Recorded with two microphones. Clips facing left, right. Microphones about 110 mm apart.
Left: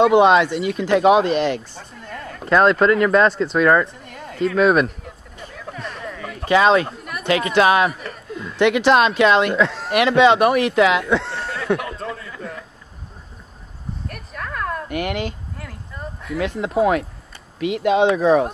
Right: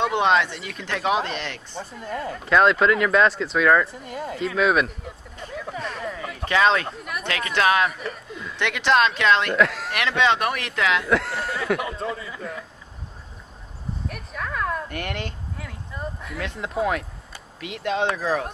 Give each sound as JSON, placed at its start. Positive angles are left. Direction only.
{"t": 0.0, "sound": "speech", "side_deg": 10}
{"t": 1.8, "sound": "speech", "side_deg": -5}
{"t": 6.5, "sound": "speech", "side_deg": 10}
{"t": 6.9, "sound": "a sound", "side_deg": 0}
{"t": 7.5, "sound": "speech", "side_deg": 15}
{"t": 7.9, "sound": "a woman's voice", "side_deg": 0}
{"t": 11.1, "sound": "speech", "side_deg": 0}
{"t": 14.0, "sound": "a sound", "side_deg": 0}
{"t": 17.6, "sound": "speech", "side_deg": 5}
{"t": 18.1, "sound": "speech", "side_deg": 25}